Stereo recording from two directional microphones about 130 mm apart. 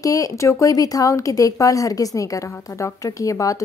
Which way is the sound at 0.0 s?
25° left (ahead or behind).